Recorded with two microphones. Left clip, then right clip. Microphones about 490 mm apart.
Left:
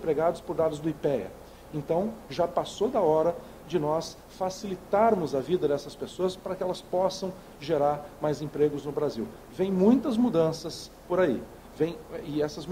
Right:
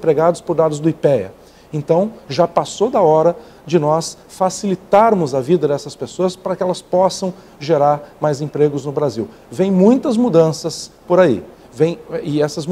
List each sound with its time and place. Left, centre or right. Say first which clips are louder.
0.0 s speech: right 12 dB; right